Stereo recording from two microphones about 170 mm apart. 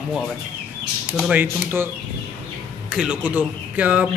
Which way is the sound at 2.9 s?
5° right (ahead or behind).